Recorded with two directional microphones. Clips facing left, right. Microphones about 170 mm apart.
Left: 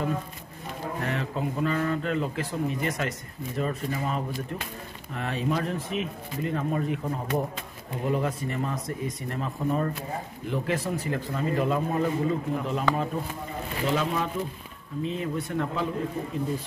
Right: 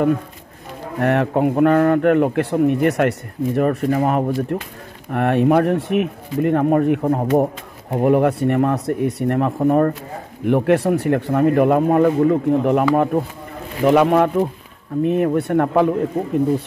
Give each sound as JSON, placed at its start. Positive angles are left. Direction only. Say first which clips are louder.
{"t": 0.9, "sound": "a man's voice", "louder": "right 15 dB", "side_deg": -65}